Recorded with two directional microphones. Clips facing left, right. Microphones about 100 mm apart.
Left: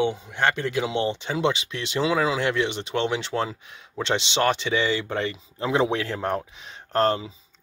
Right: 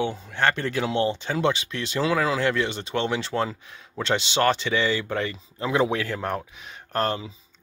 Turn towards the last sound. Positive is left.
turn(degrees=30)  # may be behind; listen again after turning